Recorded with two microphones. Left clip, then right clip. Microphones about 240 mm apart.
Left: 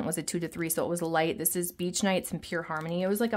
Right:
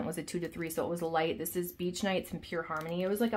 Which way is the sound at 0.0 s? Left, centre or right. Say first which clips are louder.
Left 4 dB; left.